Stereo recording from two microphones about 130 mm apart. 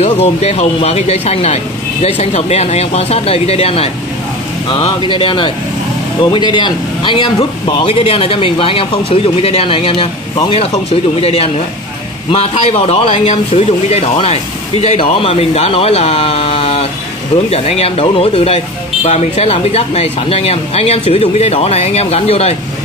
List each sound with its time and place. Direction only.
0.0 s speech: 55° left (ahead or behind)
11.2 s speech: 50° left (ahead or behind)
19.0 s speech: 60° left (ahead or behind)